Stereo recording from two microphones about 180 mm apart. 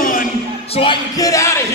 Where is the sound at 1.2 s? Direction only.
15° left (ahead or behind).